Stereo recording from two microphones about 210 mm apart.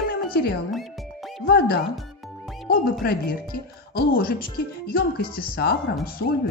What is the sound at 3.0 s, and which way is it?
Speech, 50° left (ahead or behind).